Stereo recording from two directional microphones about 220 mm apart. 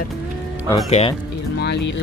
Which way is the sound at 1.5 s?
50° left (ahead or behind).